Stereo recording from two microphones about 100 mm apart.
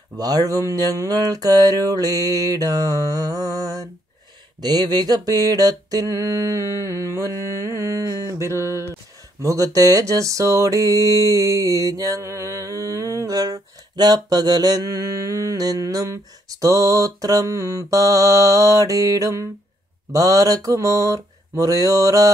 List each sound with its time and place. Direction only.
0.2 s mantra: 35° right (ahead or behind)
4.6 s a sound: 45° right (ahead or behind)
9.4 s mantra: 35° right (ahead or behind)